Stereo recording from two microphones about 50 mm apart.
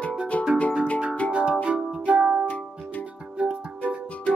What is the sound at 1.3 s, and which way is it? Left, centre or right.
Music, centre.